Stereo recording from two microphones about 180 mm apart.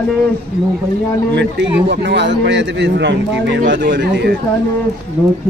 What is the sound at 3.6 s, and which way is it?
Speech, 55° right (ahead or behind).